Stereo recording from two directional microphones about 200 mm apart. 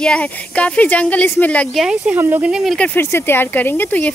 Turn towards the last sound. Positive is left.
turn(degrees=10)  # may be behind; listen again after turning